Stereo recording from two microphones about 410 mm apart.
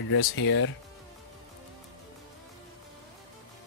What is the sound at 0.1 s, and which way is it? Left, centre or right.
Speech, left.